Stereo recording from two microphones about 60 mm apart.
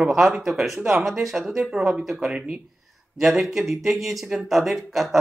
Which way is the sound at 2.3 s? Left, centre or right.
Centre.